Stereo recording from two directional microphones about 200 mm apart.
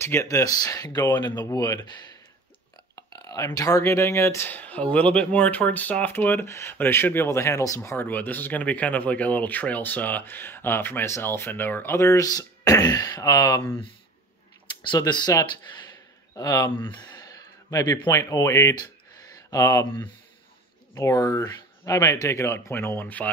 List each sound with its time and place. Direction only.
0.0 s speech: 15° left (ahead or behind)
3.1 s speech: 20° left (ahead or behind)
14.8 s speech: 20° left (ahead or behind)